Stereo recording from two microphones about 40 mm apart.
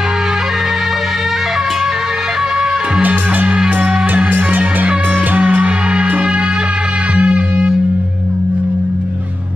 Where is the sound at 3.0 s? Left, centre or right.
Right.